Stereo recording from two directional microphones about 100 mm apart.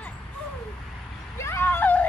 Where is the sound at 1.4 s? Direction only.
25° left (ahead or behind).